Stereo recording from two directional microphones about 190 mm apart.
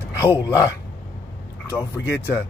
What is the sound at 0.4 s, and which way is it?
Speech, 20° left (ahead or behind).